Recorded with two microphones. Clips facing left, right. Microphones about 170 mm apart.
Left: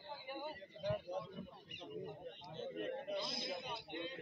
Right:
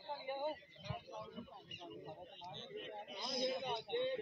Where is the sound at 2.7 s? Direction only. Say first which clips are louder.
Left 8 dB; 60° left (ahead or behind).